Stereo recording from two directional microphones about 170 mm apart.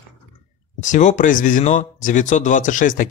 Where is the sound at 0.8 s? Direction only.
45° left (ahead or behind).